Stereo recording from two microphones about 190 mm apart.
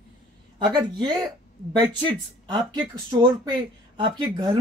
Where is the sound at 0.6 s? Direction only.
25° right (ahead or behind).